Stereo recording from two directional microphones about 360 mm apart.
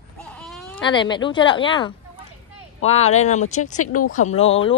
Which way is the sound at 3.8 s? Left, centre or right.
Left.